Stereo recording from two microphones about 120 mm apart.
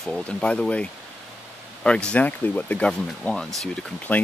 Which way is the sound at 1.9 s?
10° left (ahead or behind).